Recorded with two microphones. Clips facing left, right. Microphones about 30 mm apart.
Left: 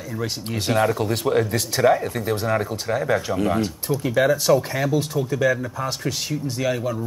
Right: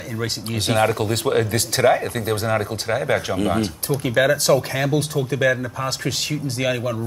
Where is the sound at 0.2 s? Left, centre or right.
Right.